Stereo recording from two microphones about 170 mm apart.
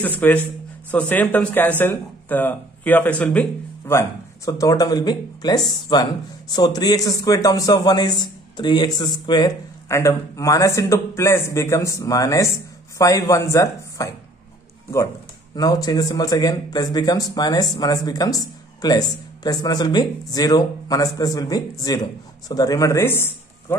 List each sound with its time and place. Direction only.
0.0 s speech: 10° left (ahead or behind)
4.5 s a man's voice: 20° left (ahead or behind)
15.5 s a man's voice: 20° left (ahead or behind)